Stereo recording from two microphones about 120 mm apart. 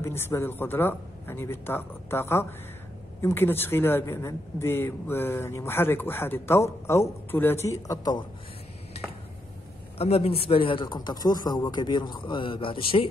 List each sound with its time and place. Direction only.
0.0 s speech: 20° left (ahead or behind)
7.6 s speech: 30° left (ahead or behind)
9.9 s speech: 60° left (ahead or behind)